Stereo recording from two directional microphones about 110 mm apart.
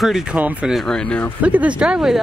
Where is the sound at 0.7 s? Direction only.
5° left (ahead or behind).